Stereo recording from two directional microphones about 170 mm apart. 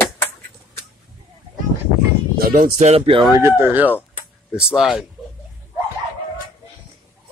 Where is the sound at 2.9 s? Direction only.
30° right (ahead or behind).